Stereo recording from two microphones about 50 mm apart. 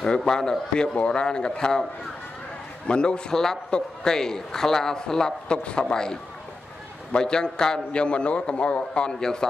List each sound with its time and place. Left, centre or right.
0.0 s a man's voice: centre
2.9 s a man's voice: centre